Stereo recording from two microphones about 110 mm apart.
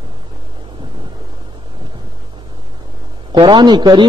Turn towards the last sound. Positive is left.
turn(degrees=-45)  # may be behind; listen again after turning